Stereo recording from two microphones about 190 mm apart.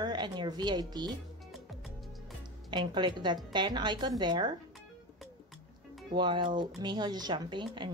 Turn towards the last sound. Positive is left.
turn(degrees=-25)  # may be behind; listen again after turning